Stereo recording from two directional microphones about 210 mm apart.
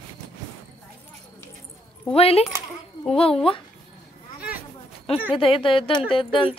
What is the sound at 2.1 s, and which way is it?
Speech, 30° left (ahead or behind).